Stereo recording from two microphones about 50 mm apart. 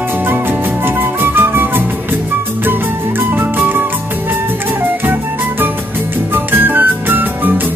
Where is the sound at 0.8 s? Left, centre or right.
Right.